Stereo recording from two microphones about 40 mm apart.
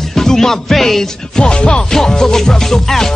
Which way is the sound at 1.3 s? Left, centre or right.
Left.